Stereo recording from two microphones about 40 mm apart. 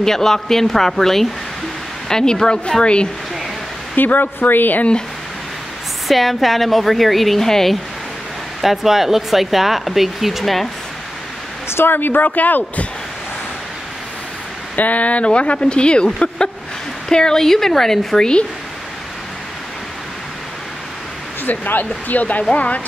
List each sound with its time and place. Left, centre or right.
0.0 s speech: centre; by 3.1 s left
3.9 s speech: left
6.0 s speech: centre
8.5 s speech: centre
11.7 s a woman's voice: left
14.8 s speech: left; by 18.3 s centre
21.5 s speech: left